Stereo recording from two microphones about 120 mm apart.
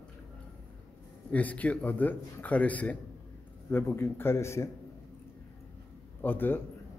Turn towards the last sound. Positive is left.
turn(degrees=15)  # may be behind; listen again after turning